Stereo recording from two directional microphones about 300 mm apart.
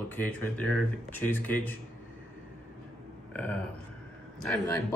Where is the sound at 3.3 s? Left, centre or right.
Centre.